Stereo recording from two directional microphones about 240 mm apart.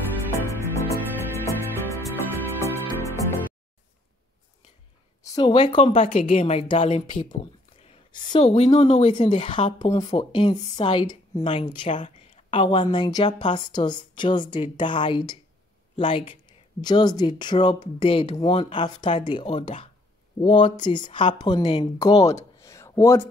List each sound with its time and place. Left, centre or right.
0.3 s music: centre
5.2 s a woman's voice: centre
7.8 s a sound: left
8.5 s speech: left; by 23.2 s centre